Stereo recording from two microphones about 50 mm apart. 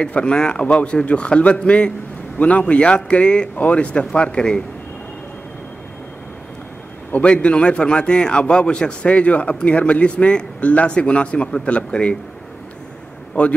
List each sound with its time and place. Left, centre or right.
0.0 s a man's voice: left
7.1 s a man's voice: left
13.3 s a man's voice: left